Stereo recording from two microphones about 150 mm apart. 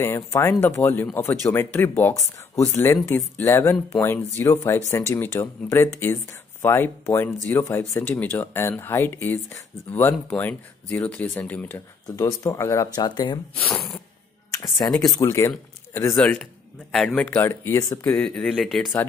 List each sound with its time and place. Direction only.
0.0 s speech: 15° left (ahead or behind)
13.6 s speech: 15° left (ahead or behind)
16.2 s speech: 5° left (ahead or behind)
18.1 s speech: 5° left (ahead or behind)